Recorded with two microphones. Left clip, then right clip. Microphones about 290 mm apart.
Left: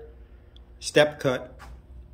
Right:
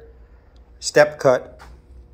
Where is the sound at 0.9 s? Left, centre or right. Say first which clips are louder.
Right 6 dB; centre.